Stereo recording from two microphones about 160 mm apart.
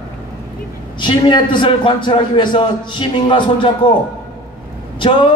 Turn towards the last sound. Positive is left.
turn(degrees=30)  # may be behind; listen again after turning